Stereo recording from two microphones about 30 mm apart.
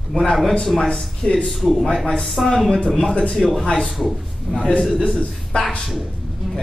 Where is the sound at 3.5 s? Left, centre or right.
Left.